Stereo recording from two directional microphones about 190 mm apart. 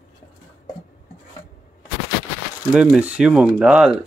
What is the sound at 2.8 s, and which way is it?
Speech, 5° right (ahead or behind).